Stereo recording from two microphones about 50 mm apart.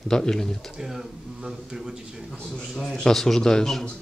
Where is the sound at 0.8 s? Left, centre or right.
Centre.